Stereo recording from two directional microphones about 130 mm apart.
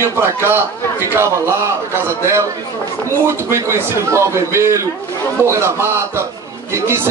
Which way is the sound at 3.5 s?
20° right (ahead or behind).